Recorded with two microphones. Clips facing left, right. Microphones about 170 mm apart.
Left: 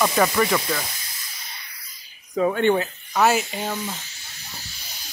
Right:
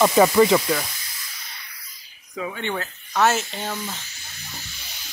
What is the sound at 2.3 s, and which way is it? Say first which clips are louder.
Speech: left 9 dB; 50° left (ahead or behind).